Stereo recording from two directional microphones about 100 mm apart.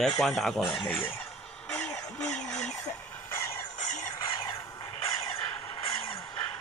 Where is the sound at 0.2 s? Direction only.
5° left (ahead or behind).